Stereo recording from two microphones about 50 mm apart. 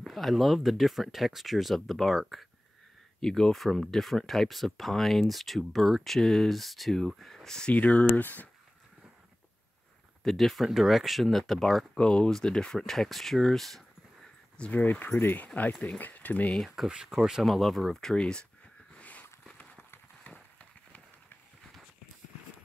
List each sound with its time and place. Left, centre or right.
0.0 s speech: centre
3.2 s speech: centre
7.7 s speech: left
8.2 s speech: left
10.2 s speech: centre
12.0 s speech: centre
14.6 s speech: left
16.7 s speech: centre
18.1 s speech: centre
18.9 s a sound: left
19.5 s clip-clop: left
20.2 s a sound: left